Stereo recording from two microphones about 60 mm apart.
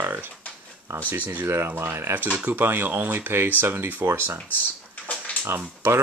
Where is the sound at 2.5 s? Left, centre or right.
Right.